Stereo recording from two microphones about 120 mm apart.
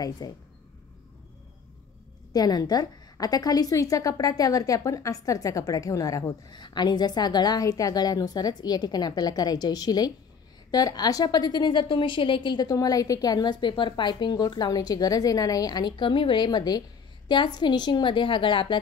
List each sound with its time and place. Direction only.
0.2 s a woman's voice: 30° left (ahead or behind)
2.3 s a woman's voice: 35° left (ahead or behind)